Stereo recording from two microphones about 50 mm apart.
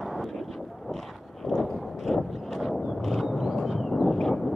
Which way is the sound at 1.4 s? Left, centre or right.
Centre.